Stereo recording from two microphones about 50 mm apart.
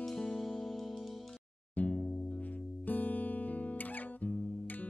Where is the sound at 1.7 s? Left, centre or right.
Left.